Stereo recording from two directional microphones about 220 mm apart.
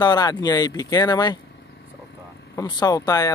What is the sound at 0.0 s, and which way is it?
Speech, 20° left (ahead or behind).